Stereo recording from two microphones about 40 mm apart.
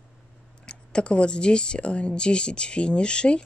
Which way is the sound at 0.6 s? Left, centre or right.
Left.